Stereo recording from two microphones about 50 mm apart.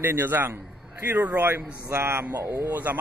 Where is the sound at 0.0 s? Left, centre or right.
Right.